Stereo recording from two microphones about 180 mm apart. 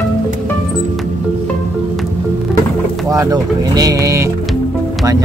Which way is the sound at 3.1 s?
20° right (ahead or behind).